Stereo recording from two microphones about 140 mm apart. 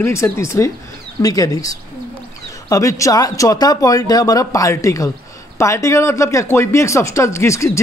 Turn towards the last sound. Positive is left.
turn(degrees=20)  # may be behind; listen again after turning